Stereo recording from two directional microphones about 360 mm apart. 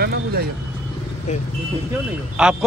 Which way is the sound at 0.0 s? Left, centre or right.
Right.